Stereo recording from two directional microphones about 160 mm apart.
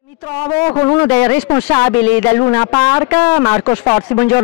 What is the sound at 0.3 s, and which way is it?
Speech, 15° left (ahead or behind).